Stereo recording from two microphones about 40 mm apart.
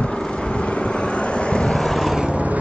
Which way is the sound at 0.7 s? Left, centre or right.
Left.